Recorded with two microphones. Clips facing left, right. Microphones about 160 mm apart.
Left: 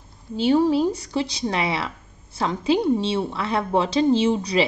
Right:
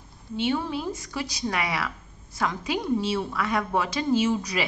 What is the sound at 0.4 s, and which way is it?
A woman's voice, 35° left (ahead or behind).